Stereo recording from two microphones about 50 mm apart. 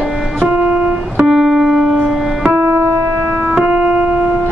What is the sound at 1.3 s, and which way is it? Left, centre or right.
Keyboard, centre.